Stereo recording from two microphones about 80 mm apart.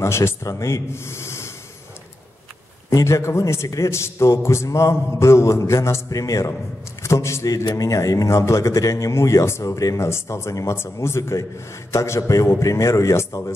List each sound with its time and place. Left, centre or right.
0.0 s a man's voice: left
2.9 s a man's voice: left